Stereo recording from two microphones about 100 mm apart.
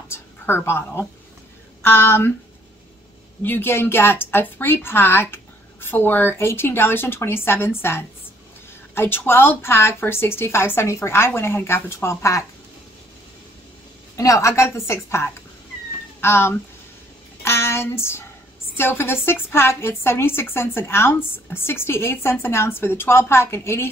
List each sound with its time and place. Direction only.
0.1 s a woman's voice: 25° left (ahead or behind)
3.4 s a woman's voice: 20° left (ahead or behind)
14.1 s a woman's voice: 30° left (ahead or behind)
17.4 s a sound: 25° left (ahead or behind)
18.8 s a woman's voice: 25° left (ahead or behind)